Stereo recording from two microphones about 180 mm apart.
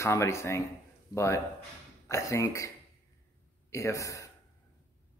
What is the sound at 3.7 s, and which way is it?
Speech, 15° left (ahead or behind).